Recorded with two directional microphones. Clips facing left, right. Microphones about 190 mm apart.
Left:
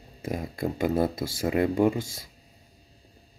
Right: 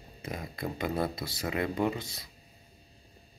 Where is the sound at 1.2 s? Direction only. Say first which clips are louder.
Left 7 dB; 50° left (ahead or behind).